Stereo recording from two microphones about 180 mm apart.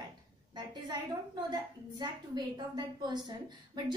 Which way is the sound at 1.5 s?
25° right (ahead or behind).